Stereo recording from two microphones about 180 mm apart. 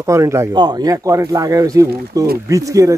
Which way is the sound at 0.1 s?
15° right (ahead or behind).